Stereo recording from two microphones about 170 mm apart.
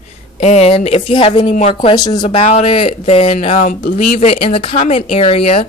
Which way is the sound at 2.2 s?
35° left (ahead or behind).